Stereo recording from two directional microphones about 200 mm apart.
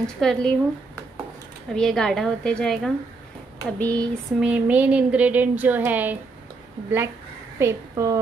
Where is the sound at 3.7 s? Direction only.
5° left (ahead or behind).